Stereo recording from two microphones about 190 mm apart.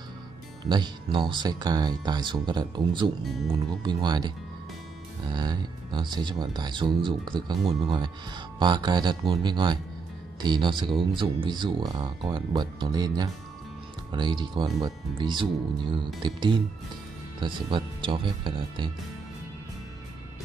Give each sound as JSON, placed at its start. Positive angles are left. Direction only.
{"t": 0.7, "sound": "speech", "side_deg": -25}
{"t": 5.3, "sound": "speech", "side_deg": -25}